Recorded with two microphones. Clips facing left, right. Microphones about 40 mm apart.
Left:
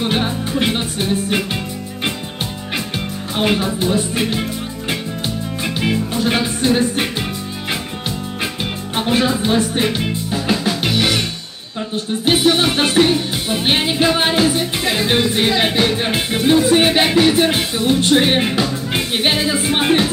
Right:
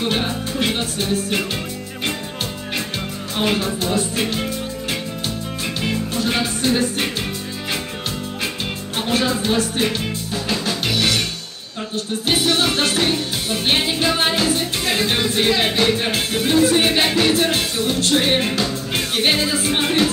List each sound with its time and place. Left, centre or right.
0.0 s music: centre
3.3 s music: centre
5.8 s music: centre
8.9 s music: centre